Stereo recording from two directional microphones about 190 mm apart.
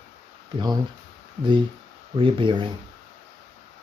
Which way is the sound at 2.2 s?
25° right (ahead or behind).